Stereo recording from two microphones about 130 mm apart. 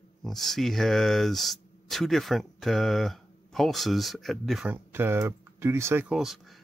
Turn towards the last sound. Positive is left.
turn(degrees=-5)  # may be behind; listen again after turning